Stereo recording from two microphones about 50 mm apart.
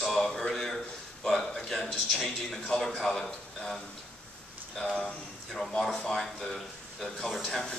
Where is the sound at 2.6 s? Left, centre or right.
Centre.